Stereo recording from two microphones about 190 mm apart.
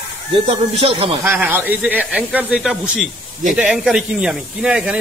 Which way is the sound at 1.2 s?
10° right (ahead or behind).